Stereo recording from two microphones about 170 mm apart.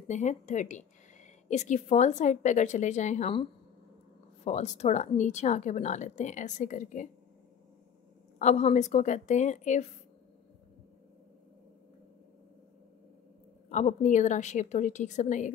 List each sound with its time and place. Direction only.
0.1 s a woman's voice: 45° left (ahead or behind)
4.5 s a woman's voice: 40° left (ahead or behind)
8.4 s a woman's voice: 40° left (ahead or behind)
13.7 s a woman's voice: 45° left (ahead or behind)